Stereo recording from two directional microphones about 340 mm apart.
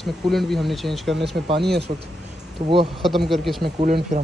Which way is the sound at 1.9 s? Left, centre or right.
Right.